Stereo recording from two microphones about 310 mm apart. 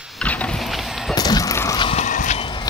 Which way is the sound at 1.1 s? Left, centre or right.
Centre.